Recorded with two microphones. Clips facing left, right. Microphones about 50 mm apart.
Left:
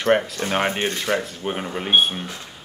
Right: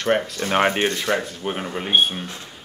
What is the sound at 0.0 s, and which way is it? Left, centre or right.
Speech, centre.